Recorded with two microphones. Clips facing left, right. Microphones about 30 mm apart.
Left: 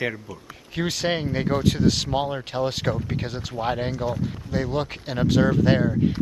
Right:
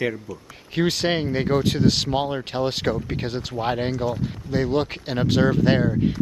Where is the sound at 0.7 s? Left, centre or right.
Centre.